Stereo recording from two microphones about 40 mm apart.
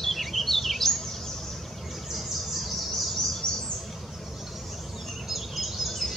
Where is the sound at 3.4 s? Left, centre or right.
Left.